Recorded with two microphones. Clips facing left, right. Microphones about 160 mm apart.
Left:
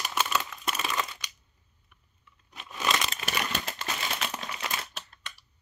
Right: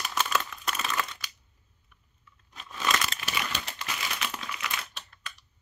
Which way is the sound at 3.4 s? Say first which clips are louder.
Left 2 dB; 45° left (ahead or behind).